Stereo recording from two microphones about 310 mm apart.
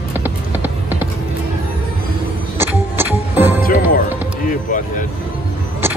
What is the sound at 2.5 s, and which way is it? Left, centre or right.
Music, centre.